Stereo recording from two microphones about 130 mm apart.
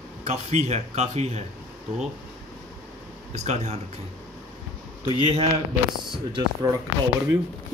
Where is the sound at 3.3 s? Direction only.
60° right (ahead or behind).